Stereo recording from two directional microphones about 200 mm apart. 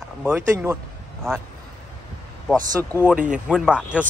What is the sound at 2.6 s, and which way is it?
Speech, 20° right (ahead or behind).